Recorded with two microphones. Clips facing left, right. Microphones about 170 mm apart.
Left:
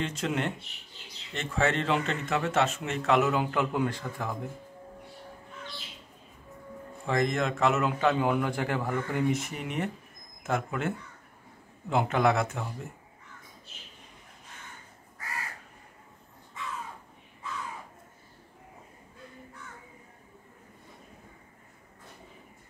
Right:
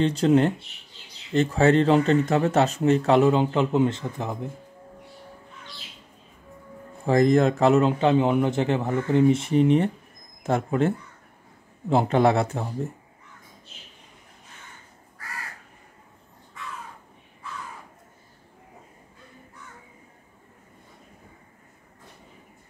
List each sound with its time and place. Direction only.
0.0 s speech: 35° right (ahead or behind)
7.1 s a man's voice: 35° right (ahead or behind)